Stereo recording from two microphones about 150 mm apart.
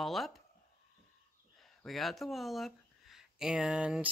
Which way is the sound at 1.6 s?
Centre (ahead or behind).